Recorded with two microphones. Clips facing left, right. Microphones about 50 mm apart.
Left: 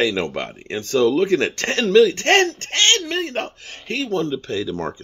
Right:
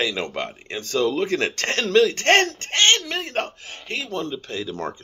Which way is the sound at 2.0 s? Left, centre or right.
Left.